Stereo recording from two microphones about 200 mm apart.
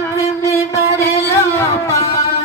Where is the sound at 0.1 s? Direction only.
15° left (ahead or behind).